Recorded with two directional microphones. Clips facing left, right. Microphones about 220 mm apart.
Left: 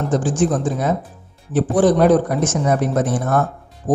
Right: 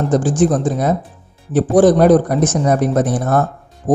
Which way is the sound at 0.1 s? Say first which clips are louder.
Right 3 dB; 40° right (ahead or behind).